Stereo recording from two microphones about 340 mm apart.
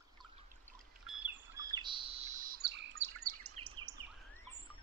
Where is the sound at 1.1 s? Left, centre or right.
Centre; by 3.9 s right.